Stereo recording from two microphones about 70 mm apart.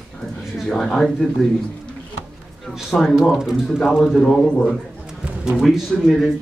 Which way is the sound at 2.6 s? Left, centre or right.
Centre.